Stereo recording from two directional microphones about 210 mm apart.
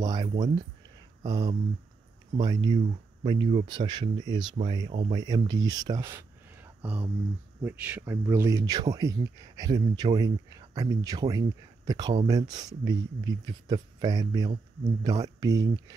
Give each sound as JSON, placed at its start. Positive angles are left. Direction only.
{"t": 0.0, "sound": "speech", "side_deg": -20}